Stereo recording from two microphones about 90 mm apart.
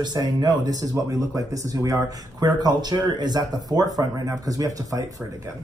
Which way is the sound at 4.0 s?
40° right (ahead or behind).